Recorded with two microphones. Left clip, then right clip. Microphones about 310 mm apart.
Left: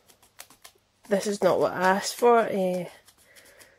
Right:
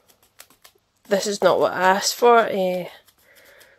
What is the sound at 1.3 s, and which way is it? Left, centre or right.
Speech, right.